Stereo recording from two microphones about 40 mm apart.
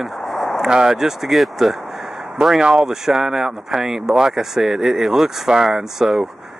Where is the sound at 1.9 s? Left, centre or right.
Centre.